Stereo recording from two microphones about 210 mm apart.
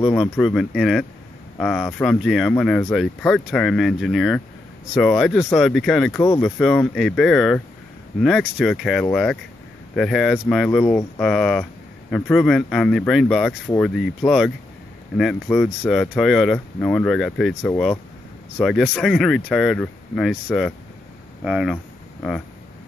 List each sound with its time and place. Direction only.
0.1 s speech: centre (ahead or behind)
18.6 s speech: centre (ahead or behind)
21.5 s speech: 5° right (ahead or behind)